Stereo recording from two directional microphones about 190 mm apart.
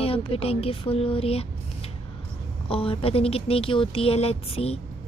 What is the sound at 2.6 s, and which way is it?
Speech, 30° left (ahead or behind).